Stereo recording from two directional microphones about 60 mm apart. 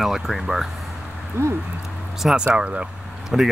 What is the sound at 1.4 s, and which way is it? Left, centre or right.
Speech, right.